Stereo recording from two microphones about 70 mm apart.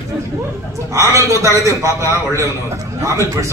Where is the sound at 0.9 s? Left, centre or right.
Right.